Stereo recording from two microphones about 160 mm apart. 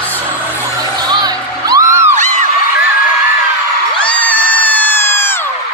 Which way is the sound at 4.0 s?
10° left (ahead or behind).